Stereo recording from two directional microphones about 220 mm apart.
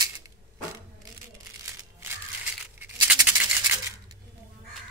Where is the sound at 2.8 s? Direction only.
5° right (ahead or behind).